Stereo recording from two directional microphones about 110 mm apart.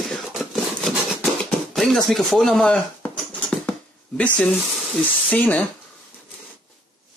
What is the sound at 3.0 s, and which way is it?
Rodents, 15° left (ahead or behind).